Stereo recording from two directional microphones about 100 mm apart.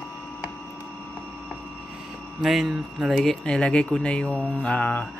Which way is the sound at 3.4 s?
10° left (ahead or behind).